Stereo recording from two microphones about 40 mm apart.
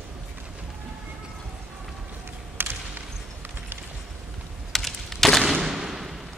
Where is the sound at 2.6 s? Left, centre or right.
Right.